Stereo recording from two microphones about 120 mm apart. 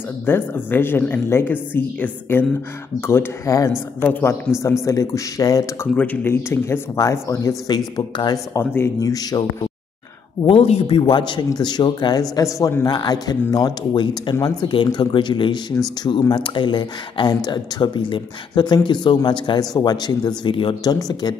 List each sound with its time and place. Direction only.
0.2 s a woman's voice: 15° left (ahead or behind)
10.4 s speech: 55° left (ahead or behind); by 21.4 s 35° left (ahead or behind)